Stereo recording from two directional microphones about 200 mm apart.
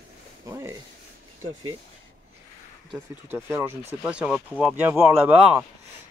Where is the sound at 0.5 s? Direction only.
15° right (ahead or behind).